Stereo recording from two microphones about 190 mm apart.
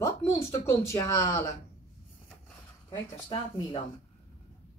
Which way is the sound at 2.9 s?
25° left (ahead or behind).